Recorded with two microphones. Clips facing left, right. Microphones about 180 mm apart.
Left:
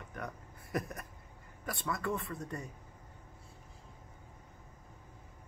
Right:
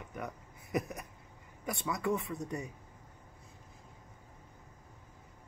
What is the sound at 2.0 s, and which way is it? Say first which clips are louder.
Speech: right 3 dB; 20° right (ahead or behind).